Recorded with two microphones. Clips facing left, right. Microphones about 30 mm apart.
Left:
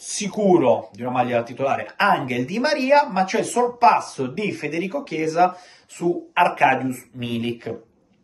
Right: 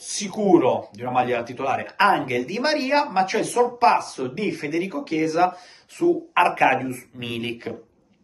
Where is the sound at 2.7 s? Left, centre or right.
Centre.